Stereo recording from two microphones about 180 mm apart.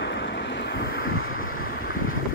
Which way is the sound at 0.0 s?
80° left.